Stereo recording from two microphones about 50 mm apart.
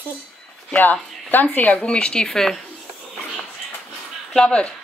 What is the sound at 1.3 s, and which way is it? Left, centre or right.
Speech, left.